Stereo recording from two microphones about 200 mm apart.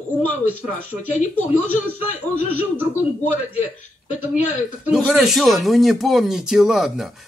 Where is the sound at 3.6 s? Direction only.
90° left.